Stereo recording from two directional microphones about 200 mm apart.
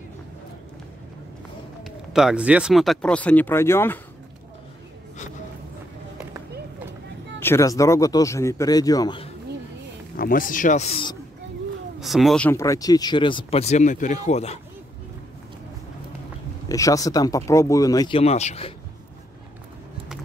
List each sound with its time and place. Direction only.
1.9 s speech: centre (ahead or behind)
7.3 s speech: 10° left (ahead or behind)
10.1 s speech: 45° left (ahead or behind); by 11.1 s 30° left (ahead or behind)
12.0 s speech: centre (ahead or behind); by 14.6 s 35° left (ahead or behind)
16.6 s speech: 15° left (ahead or behind); by 18.7 s 35° left (ahead or behind)